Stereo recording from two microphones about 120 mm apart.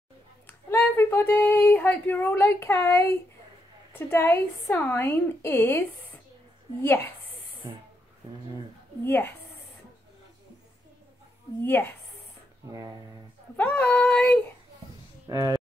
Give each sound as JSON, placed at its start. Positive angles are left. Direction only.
{"t": 0.5, "sound": "a woman's voice", "side_deg": 20}
{"t": 9.0, "sound": "a woman's voice", "side_deg": 20}
{"t": 12.6, "sound": "speech", "side_deg": -25}
{"t": 13.6, "sound": "a woman's voice", "side_deg": 15}
{"t": 15.2, "sound": "speech", "side_deg": -30}